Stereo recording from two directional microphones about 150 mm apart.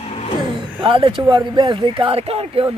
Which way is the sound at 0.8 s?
35° right (ahead or behind).